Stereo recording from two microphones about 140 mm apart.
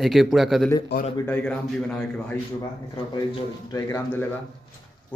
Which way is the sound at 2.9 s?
30° left (ahead or behind).